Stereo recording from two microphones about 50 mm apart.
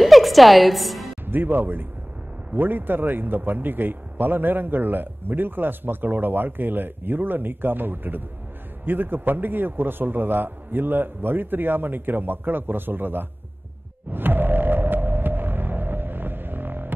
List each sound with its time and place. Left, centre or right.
0.0 s music: centre
1.2 s a man's voice: right
14.1 s hum: right